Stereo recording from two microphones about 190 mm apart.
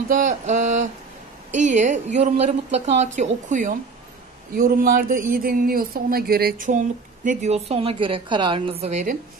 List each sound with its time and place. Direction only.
0.1 s a woman's voice: 40° right (ahead or behind)
7.2 s a woman's voice: 35° right (ahead or behind)